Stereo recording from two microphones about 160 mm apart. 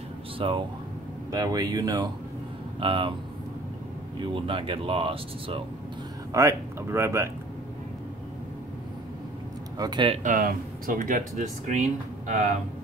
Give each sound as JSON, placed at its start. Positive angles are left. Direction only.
{"t": 0.4, "sound": "speech", "side_deg": -30}
{"t": 4.2, "sound": "speech", "side_deg": -30}
{"t": 6.3, "sound": "speech", "side_deg": -15}
{"t": 9.8, "sound": "speech", "side_deg": -30}
{"t": 10.2, "sound": "speech", "side_deg": -60}